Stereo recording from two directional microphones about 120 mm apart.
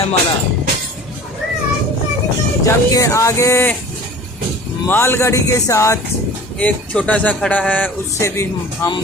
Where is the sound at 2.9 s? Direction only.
25° left (ahead or behind).